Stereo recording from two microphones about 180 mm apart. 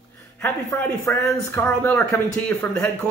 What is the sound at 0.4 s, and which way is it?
Speech, 10° left (ahead or behind).